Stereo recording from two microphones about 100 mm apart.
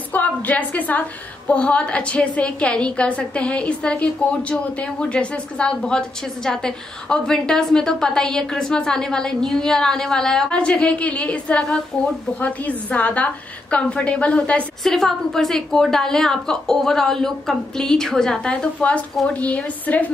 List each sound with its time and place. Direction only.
0.1 s a woman's voice: 15° left (ahead or behind)